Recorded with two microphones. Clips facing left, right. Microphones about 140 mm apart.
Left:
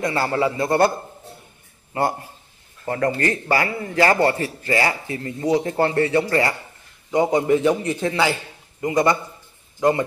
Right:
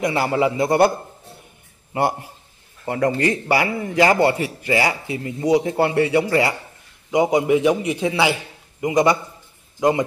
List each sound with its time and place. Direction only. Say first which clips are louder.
0.0 s a man's voice: right 2 dB; 15° right (ahead or behind)
2.8 s a man's voice: right 2 dB; 15° right (ahead or behind)